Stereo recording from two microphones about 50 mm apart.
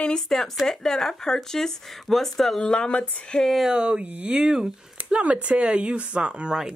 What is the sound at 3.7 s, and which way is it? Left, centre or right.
Speech, centre.